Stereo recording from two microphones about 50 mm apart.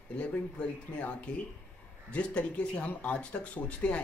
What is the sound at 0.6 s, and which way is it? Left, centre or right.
Speech, left.